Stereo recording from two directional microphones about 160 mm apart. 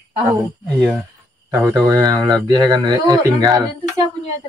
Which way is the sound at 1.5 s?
20° right (ahead or behind).